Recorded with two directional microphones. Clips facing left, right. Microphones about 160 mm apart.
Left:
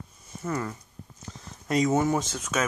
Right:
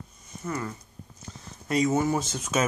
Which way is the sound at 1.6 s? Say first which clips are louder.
Left 1 dB; 5° right (ahead or behind).